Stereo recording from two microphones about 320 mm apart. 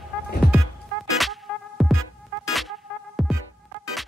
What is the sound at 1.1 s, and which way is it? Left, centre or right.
Music, centre.